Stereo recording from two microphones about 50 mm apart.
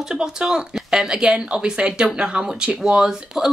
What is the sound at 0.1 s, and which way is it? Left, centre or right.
Speech, centre.